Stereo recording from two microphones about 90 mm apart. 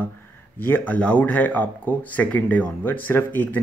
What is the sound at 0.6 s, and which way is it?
Speech, 20° left (ahead or behind).